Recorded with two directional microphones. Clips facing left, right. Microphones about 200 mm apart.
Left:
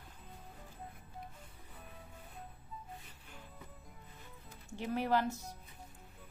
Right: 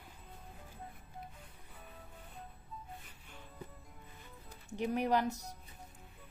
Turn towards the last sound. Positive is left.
turn(degrees=-20)  # may be behind; listen again after turning